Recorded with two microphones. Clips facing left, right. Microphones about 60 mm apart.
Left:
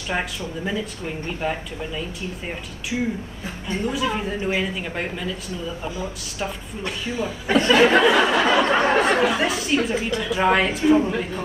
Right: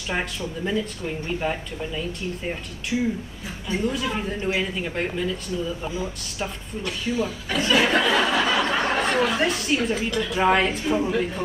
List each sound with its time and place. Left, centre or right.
0.1 s speech: centre
3.8 s speech: centre
6.8 s speech: left
7.5 s speech: left
8.0 s a sound: centre
8.5 s a sound: left
9.1 s speech: centre
9.4 s speech: centre